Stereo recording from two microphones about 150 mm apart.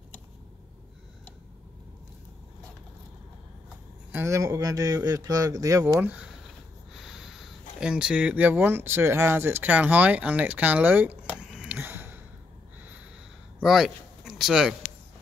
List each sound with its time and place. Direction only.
4.1 s speech: 20° right (ahead or behind)
6.0 s speech: 10° right (ahead or behind)
11.5 s a sound: 10° right (ahead or behind)
13.6 s speech: centre (ahead or behind)